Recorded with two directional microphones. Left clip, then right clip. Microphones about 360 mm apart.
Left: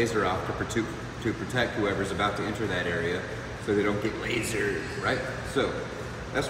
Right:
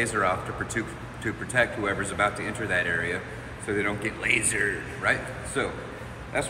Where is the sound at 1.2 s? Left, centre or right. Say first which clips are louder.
Right 4 dB; centre.